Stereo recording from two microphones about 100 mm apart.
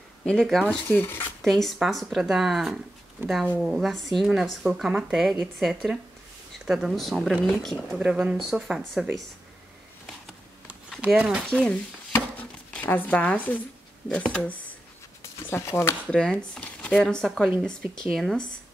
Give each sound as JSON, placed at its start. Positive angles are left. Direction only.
{"t": 0.2, "sound": "speech", "side_deg": 5}
{"t": 0.7, "sound": "speech", "side_deg": 20}
{"t": 1.4, "sound": "speech", "side_deg": 0}
{"t": 3.2, "sound": "speech", "side_deg": -20}
{"t": 3.6, "sound": "speech", "side_deg": 0}
{"t": 8.0, "sound": "speech", "side_deg": -10}
{"t": 11.1, "sound": "speech", "side_deg": -5}
{"t": 11.4, "sound": "speech", "side_deg": 10}
{"t": 12.1, "sound": "chopping", "side_deg": 20}
{"t": 14.0, "sound": "speech", "side_deg": 5}
{"t": 15.5, "sound": "speech", "side_deg": 25}
{"t": 16.1, "sound": "speech", "side_deg": 5}